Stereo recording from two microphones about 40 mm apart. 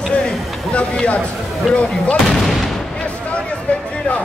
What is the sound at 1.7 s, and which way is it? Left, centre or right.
Speech, left.